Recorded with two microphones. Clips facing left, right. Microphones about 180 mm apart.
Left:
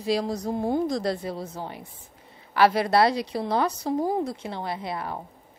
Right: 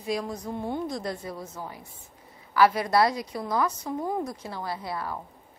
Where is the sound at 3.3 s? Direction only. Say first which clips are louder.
Left 3 dB; 30° left (ahead or behind).